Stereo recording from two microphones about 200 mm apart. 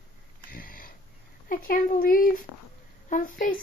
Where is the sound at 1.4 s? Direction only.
45° left (ahead or behind).